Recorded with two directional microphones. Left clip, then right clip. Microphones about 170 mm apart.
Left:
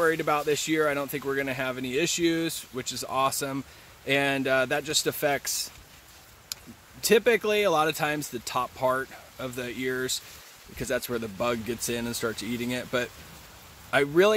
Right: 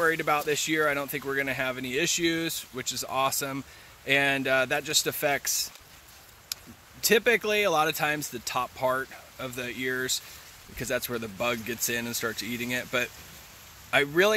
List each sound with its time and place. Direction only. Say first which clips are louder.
0.0 s speech: left 1 dB; 15° left (ahead or behind)